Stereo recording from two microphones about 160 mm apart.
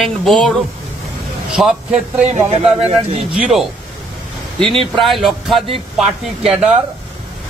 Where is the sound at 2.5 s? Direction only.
40° right (ahead or behind).